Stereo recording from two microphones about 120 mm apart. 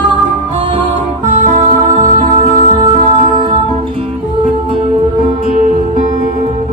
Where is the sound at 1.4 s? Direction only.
90° right.